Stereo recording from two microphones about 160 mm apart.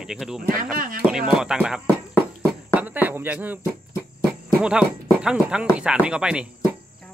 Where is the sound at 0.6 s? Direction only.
60° right (ahead or behind).